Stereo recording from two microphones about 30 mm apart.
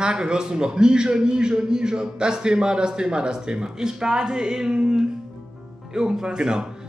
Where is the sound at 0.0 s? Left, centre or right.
Right.